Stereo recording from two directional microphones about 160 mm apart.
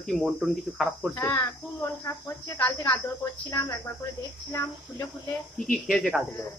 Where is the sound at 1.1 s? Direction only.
15° left (ahead or behind).